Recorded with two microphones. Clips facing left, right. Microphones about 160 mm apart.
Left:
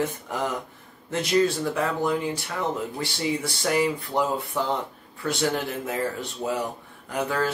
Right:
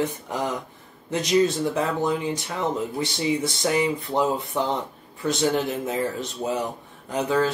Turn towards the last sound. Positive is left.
turn(degrees=-20)  # may be behind; listen again after turning